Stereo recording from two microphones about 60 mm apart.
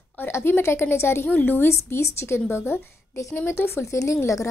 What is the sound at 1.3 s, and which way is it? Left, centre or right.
Speech, left.